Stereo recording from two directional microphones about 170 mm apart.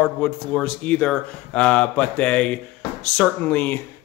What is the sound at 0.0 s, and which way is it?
Speech, 10° left (ahead or behind).